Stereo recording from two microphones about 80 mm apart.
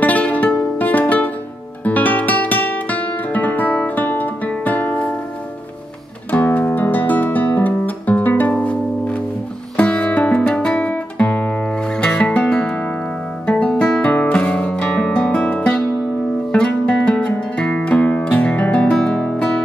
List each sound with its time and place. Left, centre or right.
0.0 s music: centre
1.9 s guitar: centre
6.3 s guitar: left
12.0 s music: centre
13.5 s guitar: centre
14.1 s music: centre